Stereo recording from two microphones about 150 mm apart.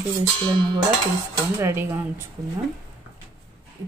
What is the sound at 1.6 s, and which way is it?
Speech, 20° right (ahead or behind).